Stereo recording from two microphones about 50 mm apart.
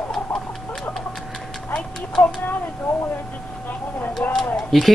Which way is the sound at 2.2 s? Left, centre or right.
Left.